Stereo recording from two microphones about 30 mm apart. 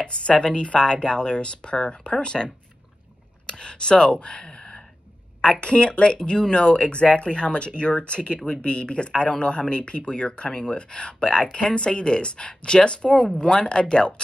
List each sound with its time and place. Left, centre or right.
0.0 s speech: left
6.1 s speech: left